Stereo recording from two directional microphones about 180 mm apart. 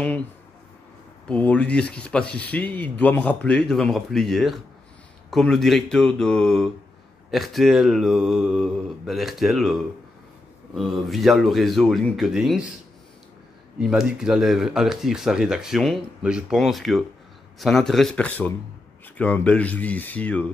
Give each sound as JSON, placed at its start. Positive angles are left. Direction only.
{"t": 1.3, "sound": "speech", "side_deg": 5}
{"t": 13.7, "sound": "speech", "side_deg": -5}